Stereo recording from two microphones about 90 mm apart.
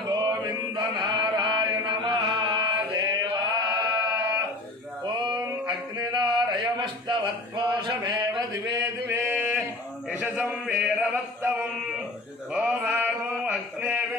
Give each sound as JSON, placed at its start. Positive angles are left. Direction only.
{"t": 0.7, "sound": "chant", "side_deg": -55}
{"t": 5.0, "sound": "male singing", "side_deg": -55}
{"t": 9.0, "sound": "a sound", "side_deg": -25}
{"t": 10.2, "sound": "chant", "side_deg": -20}
{"t": 12.5, "sound": "male singing", "side_deg": -5}
{"t": 12.9, "sound": "a sound", "side_deg": -25}